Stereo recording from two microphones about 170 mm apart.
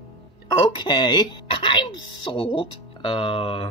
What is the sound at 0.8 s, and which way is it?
Speech, 25° left (ahead or behind).